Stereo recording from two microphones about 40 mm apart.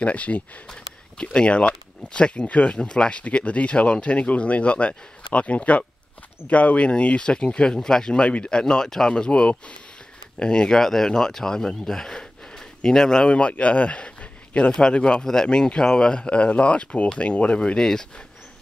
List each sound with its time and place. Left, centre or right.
0.0 s speech: left
10.8 s speech: centre
13.3 s speech: left
17.7 s speech: centre